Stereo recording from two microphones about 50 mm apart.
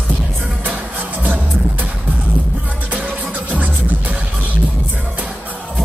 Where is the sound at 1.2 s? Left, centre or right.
Right.